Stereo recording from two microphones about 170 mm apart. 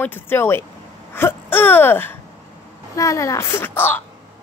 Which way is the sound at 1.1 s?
15° left (ahead or behind).